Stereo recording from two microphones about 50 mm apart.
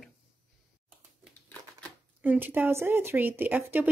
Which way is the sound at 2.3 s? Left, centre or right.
Right.